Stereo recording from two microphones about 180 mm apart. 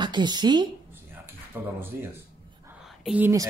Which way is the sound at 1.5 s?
10° right (ahead or behind).